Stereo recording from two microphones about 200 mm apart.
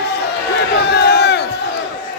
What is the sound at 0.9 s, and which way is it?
Crowd, 55° left (ahead or behind).